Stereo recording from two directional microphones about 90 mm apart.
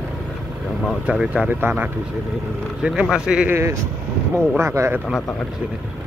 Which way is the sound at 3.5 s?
30° right (ahead or behind).